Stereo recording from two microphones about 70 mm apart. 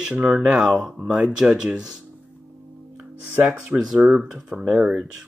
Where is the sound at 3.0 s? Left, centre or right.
Centre.